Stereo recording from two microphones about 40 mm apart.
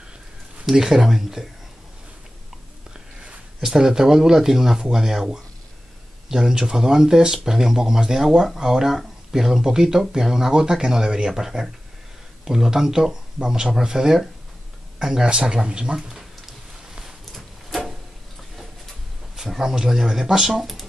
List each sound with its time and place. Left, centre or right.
0.7 s speech: centre
3.6 s a man's voice: centre
17.3 s a sound: centre
19.3 s speech: centre